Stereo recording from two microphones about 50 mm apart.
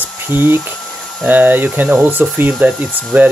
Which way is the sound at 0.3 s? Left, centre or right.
Right.